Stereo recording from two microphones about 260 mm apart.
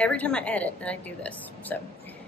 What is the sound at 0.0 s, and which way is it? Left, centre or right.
A woman's voice, centre.